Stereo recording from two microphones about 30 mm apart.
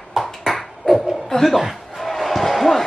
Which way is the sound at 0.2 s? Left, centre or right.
Centre.